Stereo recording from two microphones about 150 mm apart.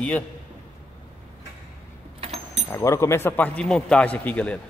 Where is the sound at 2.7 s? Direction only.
20° left (ahead or behind).